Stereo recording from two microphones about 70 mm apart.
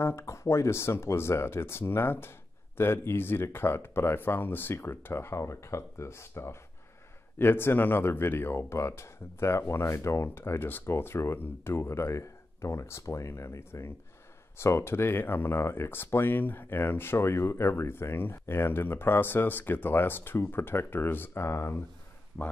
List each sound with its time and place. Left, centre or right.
0.0 s speech: left
22.3 s speech: centre